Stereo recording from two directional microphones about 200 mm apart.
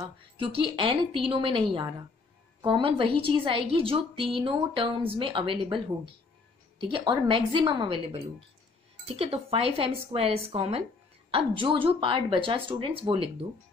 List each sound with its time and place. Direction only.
0.0 s a woman's voice: 25° right (ahead or behind)
6.8 s a woman's voice: 25° right (ahead or behind)